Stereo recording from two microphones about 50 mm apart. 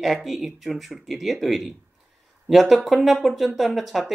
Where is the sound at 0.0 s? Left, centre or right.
Centre.